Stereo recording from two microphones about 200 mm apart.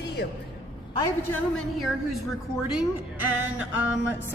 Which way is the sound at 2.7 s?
10° right (ahead or behind).